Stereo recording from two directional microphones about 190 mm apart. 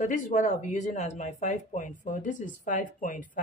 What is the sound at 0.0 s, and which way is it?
Speech, 40° left (ahead or behind).